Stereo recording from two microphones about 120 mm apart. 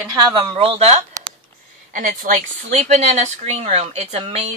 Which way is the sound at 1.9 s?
90° right.